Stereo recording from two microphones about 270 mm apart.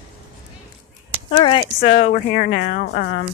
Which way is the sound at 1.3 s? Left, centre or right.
Centre.